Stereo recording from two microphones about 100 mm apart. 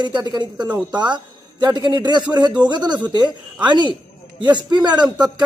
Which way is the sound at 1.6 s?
45° right (ahead or behind).